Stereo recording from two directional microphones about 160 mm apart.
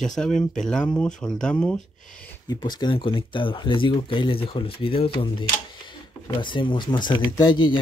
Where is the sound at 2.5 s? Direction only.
25° left (ahead or behind).